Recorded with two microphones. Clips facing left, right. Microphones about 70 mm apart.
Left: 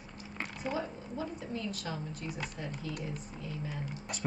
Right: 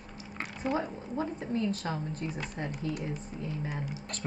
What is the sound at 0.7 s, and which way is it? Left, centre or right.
Speech, right.